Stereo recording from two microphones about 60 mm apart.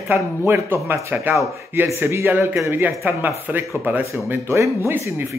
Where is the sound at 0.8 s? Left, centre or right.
Right.